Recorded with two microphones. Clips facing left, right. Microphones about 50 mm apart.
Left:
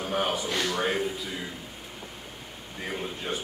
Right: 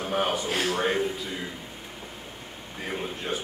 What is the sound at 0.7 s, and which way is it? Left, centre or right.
Speech, centre.